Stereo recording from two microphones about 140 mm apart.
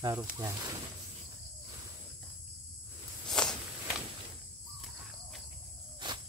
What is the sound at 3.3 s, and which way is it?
Walk, 5° left (ahead or behind).